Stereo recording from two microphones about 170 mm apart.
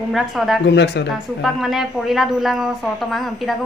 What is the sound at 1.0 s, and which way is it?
Speech, 90° left.